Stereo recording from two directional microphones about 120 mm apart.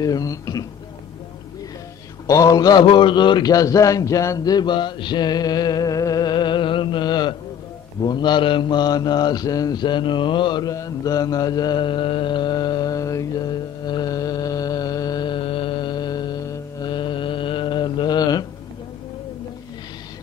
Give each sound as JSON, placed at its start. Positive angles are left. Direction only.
{"t": 0.0, "sound": "a man's voice", "side_deg": 30}
{"t": 2.2, "sound": "a man's voice", "side_deg": 30}
{"t": 8.0, "sound": "mantra", "side_deg": 40}